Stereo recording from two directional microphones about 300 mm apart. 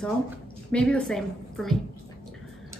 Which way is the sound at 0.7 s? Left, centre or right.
Centre.